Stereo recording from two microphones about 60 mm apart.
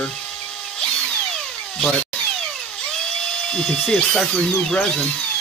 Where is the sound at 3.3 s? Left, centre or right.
Centre.